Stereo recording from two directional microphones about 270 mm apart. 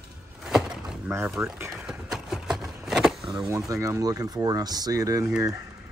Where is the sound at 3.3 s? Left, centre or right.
Centre.